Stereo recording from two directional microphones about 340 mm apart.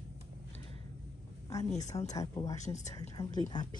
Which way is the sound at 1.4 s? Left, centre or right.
Centre.